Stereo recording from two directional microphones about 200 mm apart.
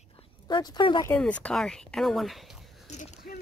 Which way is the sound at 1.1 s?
5° left (ahead or behind).